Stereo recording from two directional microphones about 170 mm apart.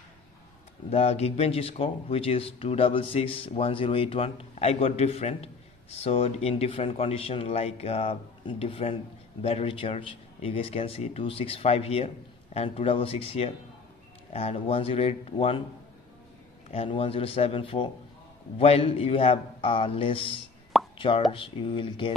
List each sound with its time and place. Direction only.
0.8 s speech: 35° left (ahead or behind)
16.7 s speech: 35° left (ahead or behind)
20.7 s plop: centre (ahead or behind)
21.3 s speech: 30° left (ahead or behind)